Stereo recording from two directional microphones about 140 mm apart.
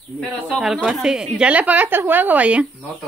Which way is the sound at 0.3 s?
Centre (ahead or behind).